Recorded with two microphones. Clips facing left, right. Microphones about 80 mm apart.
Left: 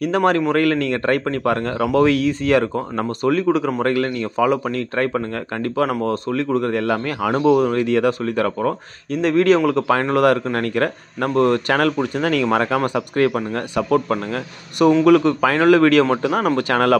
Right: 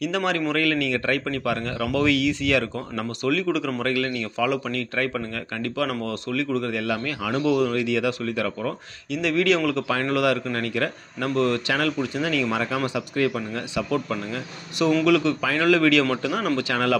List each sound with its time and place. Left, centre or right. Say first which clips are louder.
0.0 s a man's voice: left 7 dB; left